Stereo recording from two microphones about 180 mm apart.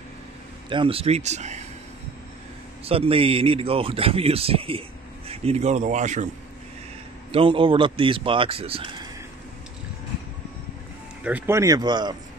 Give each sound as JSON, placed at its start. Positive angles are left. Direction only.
{"t": 0.7, "sound": "speech", "side_deg": -30}
{"t": 2.8, "sound": "speech", "side_deg": -30}
{"t": 7.3, "sound": "speech", "side_deg": -30}
{"t": 11.2, "sound": "speech", "side_deg": -10}